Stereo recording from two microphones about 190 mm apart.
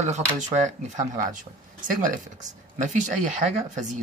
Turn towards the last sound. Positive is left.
turn(degrees=-40)  # may be behind; listen again after turning